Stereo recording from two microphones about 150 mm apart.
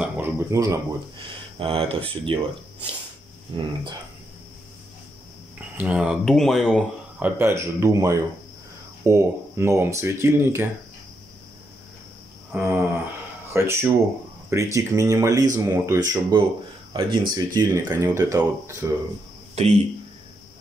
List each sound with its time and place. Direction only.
0.0 s a sound: 15° right (ahead or behind)
1.6 s speech: 40° right (ahead or behind)
5.8 s speech: 10° right (ahead or behind)
12.5 s speech: 15° right (ahead or behind)
19.5 s speech: 45° right (ahead or behind)